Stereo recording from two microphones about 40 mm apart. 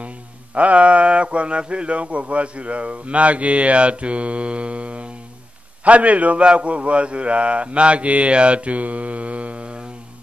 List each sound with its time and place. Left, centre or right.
0.6 s speech: right